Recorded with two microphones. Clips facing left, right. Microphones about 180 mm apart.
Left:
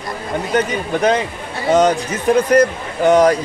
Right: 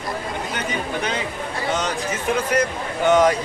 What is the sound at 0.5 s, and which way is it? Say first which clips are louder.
Speech: left 17 dB; 45° left (ahead or behind).